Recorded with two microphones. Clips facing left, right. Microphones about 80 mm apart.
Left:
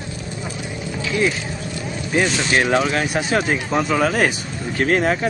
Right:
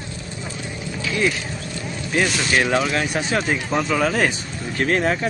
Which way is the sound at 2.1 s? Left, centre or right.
Centre.